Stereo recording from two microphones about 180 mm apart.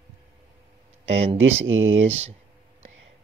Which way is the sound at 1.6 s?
90° right.